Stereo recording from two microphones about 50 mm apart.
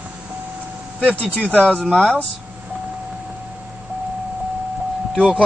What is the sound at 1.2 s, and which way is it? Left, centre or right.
Speech, left.